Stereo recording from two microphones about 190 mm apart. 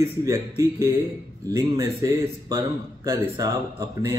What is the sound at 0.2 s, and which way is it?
Speech, 15° right (ahead or behind).